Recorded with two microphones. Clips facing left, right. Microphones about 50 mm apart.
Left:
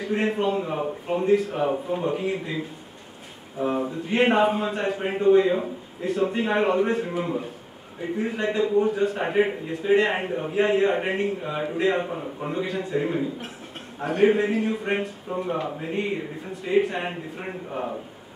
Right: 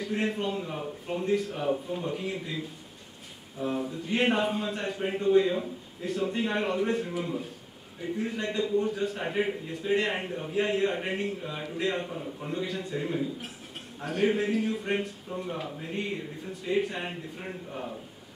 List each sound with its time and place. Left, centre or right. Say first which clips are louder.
0.1 s a man's voice: left 7 dB; centre
0.6 s speech: left 8 dB; left
1.2 s a man's voice: left 7 dB; centre
1.5 s a man's voice: left 5 dB; centre
9.2 s a man's voice: left 7 dB; left
12.1 s a man's voice: left 5 dB; left